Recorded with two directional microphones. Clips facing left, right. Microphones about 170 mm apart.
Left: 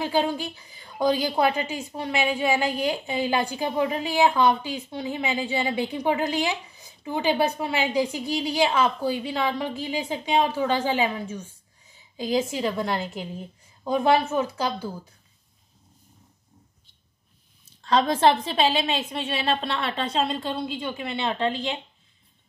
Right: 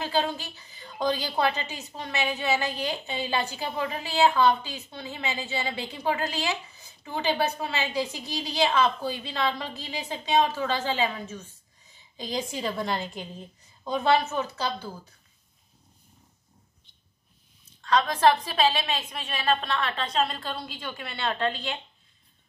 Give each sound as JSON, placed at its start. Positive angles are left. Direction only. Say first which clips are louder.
{"t": 0.0, "sound": "a woman's voice", "louder": "left 4 dB", "side_deg": 10}
{"t": 17.8, "sound": "a woman's voice", "louder": "left 2 dB", "side_deg": 30}